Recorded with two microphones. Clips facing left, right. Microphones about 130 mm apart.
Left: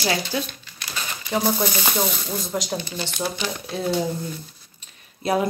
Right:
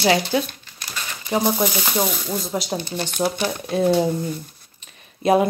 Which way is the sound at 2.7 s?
50° right (ahead or behind).